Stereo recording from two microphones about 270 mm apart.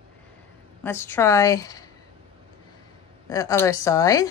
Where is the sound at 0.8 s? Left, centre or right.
Centre.